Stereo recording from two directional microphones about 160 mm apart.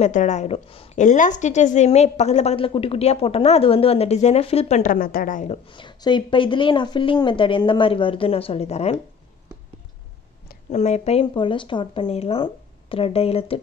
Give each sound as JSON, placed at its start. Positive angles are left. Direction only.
{"t": 0.0, "sound": "a woman's voice", "side_deg": 50}
{"t": 0.9, "sound": "a woman's voice", "side_deg": 50}
{"t": 5.7, "sound": "a woman's voice", "side_deg": 30}
{"t": 10.7, "sound": "a woman's voice", "side_deg": 45}